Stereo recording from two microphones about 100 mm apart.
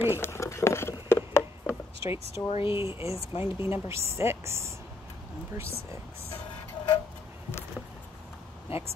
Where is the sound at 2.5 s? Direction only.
60° left (ahead or behind).